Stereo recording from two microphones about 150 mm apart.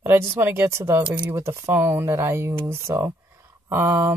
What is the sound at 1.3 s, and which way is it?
Speech, 20° right (ahead or behind).